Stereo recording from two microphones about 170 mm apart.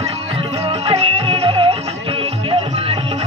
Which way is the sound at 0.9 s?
35° right (ahead or behind).